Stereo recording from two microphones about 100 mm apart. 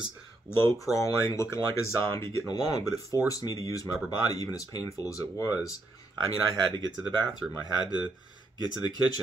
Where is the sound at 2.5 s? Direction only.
40° left (ahead or behind).